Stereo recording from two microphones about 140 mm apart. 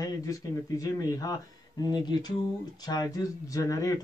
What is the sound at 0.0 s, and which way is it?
Speech, 25° left (ahead or behind).